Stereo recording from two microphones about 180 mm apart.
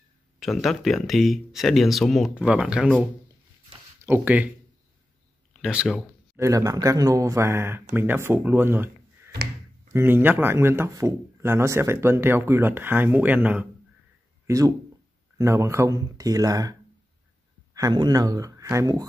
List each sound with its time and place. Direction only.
0.4 s speech: centre (ahead or behind)
5.5 s speech: 5° right (ahead or behind)
6.3 s speech: 15° right (ahead or behind)
9.9 s speech: 10° right (ahead or behind)
14.4 s a sound: 15° right (ahead or behind)
15.3 s speech: 15° right (ahead or behind)
17.7 s speech: 20° right (ahead or behind)